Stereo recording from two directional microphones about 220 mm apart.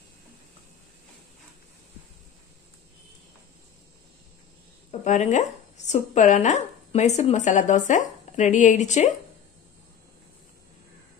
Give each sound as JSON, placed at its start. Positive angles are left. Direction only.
{"t": 5.0, "sound": "speech", "side_deg": 35}